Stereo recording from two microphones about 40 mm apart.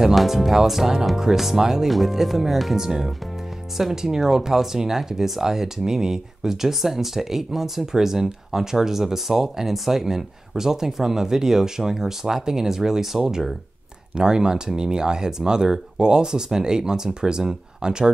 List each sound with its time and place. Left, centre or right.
0.1 s speech: centre